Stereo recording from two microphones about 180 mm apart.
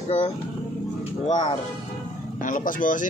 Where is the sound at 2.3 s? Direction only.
45° left (ahead or behind).